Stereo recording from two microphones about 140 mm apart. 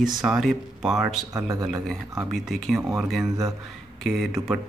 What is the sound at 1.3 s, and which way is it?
Speech, 25° right (ahead or behind).